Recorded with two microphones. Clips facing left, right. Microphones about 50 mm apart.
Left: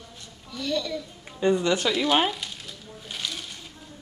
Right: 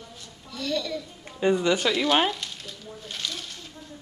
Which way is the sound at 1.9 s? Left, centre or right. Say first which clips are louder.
Left 1 dB; centre.